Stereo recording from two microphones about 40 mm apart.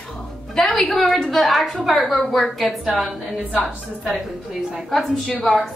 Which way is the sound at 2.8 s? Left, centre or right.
Centre.